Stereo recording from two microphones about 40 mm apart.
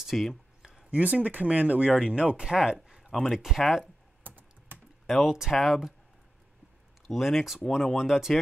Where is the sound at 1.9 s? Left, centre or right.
Right.